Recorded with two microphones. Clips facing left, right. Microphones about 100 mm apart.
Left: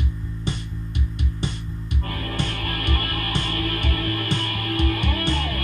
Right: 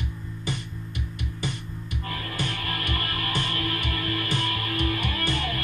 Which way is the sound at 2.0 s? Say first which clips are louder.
Left 3 dB; 50° left (ahead or behind).